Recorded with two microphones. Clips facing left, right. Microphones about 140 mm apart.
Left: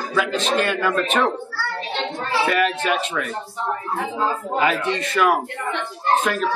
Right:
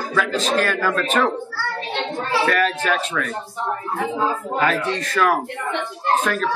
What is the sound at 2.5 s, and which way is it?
Speech, 10° left (ahead or behind).